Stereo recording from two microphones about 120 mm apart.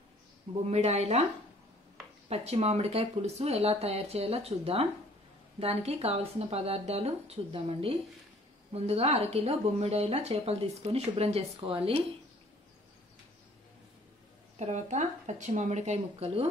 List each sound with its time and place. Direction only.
0.7 s a woman's voice: 65° right (ahead or behind)
2.2 s a woman's voice: 60° right (ahead or behind)
14.6 s speech: 75° right (ahead or behind)